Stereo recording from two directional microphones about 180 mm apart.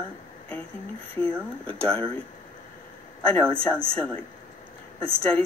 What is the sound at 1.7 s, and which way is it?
Speech, 5° left (ahead or behind).